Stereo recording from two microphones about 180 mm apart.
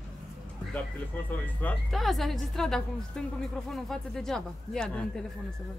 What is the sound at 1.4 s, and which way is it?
A woman's voice, 5° left (ahead or behind).